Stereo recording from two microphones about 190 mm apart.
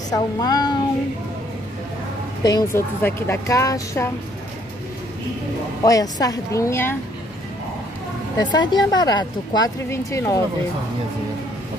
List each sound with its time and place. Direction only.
0.1 s a woman's voice: 20° left (ahead or behind)
2.4 s a woman's voice: 15° left (ahead or behind)
5.9 s a woman's voice: 20° left (ahead or behind)
8.4 s a woman's voice: 20° left (ahead or behind)